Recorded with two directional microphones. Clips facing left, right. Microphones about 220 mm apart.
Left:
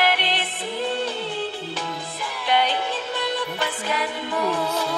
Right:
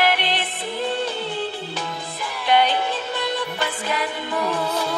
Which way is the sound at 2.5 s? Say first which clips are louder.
Right 3 dB; 50° right (ahead or behind).